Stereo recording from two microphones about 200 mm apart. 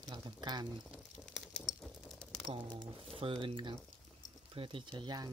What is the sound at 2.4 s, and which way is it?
Speech, 25° right (ahead or behind).